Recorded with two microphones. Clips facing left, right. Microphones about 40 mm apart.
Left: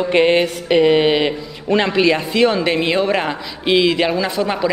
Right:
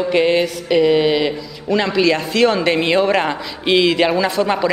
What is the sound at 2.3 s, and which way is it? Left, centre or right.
A woman's voice, centre.